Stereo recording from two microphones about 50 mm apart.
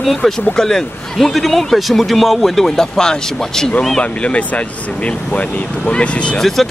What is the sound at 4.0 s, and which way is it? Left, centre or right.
Speech, left.